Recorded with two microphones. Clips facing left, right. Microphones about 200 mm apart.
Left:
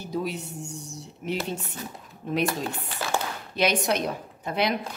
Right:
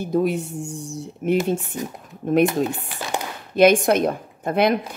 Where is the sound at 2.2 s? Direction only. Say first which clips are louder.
Right 9 dB; 50° right (ahead or behind).